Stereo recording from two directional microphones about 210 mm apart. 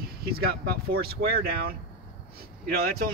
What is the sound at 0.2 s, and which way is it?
Speech, 45° right (ahead or behind).